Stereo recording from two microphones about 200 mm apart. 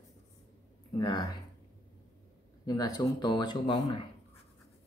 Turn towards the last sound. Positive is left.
turn(degrees=25)  # may be behind; listen again after turning